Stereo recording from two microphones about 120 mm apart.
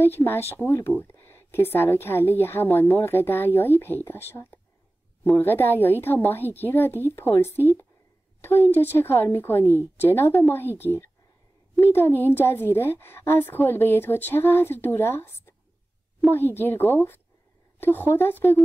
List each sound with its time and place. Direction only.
0.0 s a woman's voice: 20° left (ahead or behind)